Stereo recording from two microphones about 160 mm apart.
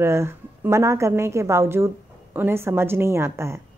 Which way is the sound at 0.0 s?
15° right (ahead or behind).